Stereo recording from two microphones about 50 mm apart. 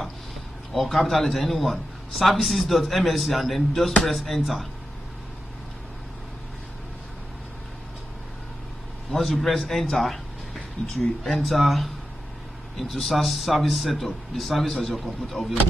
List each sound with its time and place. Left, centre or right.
0.7 s a man's voice: centre
9.1 s a man's voice: centre